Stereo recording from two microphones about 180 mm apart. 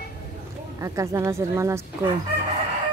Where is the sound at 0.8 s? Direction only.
15° right (ahead or behind).